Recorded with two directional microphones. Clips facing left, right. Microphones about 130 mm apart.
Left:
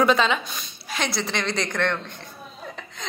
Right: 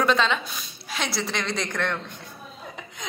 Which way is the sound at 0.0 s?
5° left (ahead or behind).